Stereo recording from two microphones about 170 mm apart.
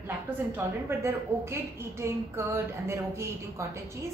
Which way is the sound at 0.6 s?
15° right (ahead or behind).